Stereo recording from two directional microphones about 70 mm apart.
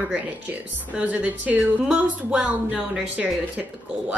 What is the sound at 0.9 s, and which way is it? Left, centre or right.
Speech, right.